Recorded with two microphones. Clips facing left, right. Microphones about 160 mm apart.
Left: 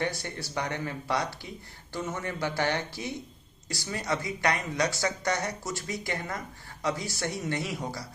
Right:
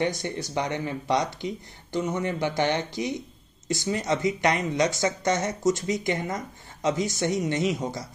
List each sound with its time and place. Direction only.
0.0 s speech: 20° right (ahead or behind)